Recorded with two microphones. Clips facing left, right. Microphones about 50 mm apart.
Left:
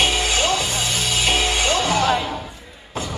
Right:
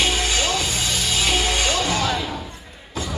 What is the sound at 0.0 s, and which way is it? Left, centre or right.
Music, left.